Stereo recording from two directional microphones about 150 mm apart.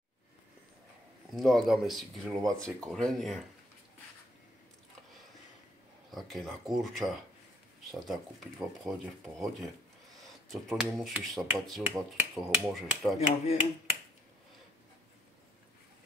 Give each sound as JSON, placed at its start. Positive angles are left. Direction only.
{"t": 1.3, "sound": "speech", "side_deg": 0}
{"t": 6.1, "sound": "speech", "side_deg": 0}
{"t": 11.9, "sound": "speech", "side_deg": -20}
{"t": 12.4, "sound": "speech", "side_deg": 0}